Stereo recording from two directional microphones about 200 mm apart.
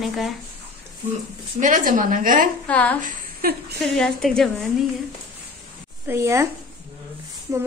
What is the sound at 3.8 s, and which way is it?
Speech, centre (ahead or behind).